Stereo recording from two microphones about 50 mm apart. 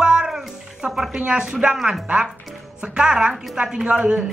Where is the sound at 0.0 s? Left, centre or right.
Centre.